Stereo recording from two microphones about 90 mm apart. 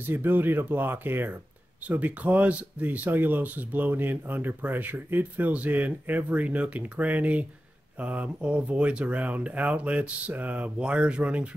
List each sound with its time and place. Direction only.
0.0 s speech: 20° right (ahead or behind)